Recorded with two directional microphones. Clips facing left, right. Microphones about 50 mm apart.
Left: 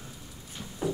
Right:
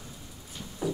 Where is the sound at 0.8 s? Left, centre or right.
Left.